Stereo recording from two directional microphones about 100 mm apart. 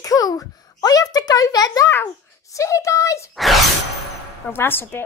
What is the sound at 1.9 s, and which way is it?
A child's voice, 30° left (ahead or behind).